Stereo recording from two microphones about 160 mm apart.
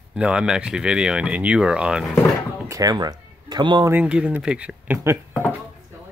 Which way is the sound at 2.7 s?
20° right (ahead or behind).